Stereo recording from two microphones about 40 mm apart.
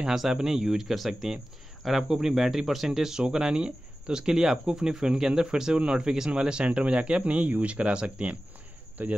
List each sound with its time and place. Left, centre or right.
0.1 s speech: centre
9.0 s speech: right